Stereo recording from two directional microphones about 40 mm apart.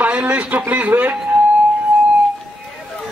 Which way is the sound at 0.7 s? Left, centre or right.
Right.